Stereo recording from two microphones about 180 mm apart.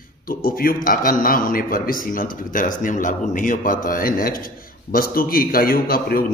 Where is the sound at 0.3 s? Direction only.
55° left (ahead or behind).